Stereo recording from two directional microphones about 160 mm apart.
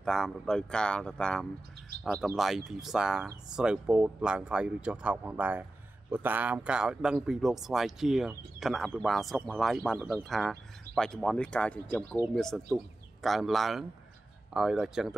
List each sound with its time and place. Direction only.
0.0 s speech: 5° left (ahead or behind)